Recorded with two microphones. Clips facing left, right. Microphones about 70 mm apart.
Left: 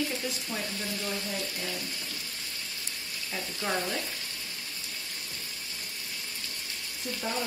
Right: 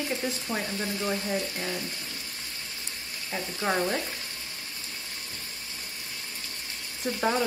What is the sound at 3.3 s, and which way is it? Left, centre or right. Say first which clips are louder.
Speech: right 4 dB; right.